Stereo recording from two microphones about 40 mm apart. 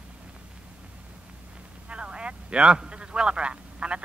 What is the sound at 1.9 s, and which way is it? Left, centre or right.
Speech, right.